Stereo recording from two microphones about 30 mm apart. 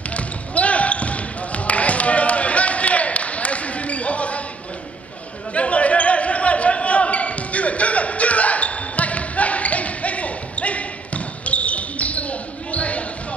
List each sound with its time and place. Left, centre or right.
0.1 s basketball bounce: left
5.5 s basketball bounce: left